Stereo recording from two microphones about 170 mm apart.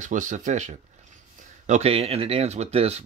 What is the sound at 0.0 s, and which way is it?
Speech, 50° right (ahead or behind).